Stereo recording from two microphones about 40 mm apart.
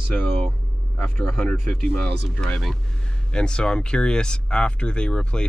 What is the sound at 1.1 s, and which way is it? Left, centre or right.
Speech, centre.